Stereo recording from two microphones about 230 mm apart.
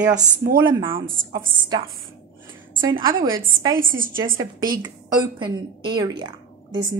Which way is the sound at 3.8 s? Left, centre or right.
Right.